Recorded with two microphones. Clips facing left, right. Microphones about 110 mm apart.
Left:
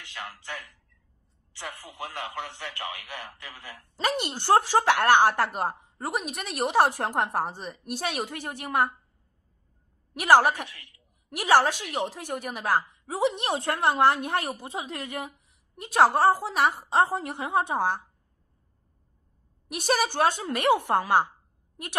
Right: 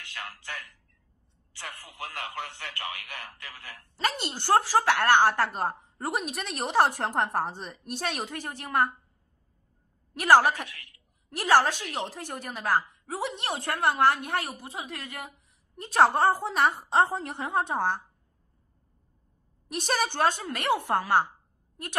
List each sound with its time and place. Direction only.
0.0 s a woman's voice: 15° left (ahead or behind)
5.9 s speech: centre (ahead or behind)
6.6 s a woman's voice: 15° left (ahead or behind)
10.1 s a woman's voice: 15° left (ahead or behind)
17.5 s a woman's voice: 15° left (ahead or behind)
19.7 s a woman's voice: 5° left (ahead or behind)